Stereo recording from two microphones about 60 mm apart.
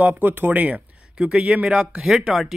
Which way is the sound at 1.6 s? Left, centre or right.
Centre.